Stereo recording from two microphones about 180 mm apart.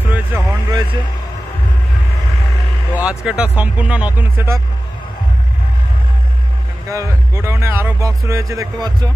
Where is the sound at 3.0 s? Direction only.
5° right (ahead or behind).